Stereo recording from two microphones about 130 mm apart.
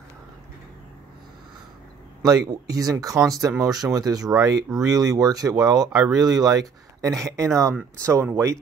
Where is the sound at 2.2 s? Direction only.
30° right (ahead or behind).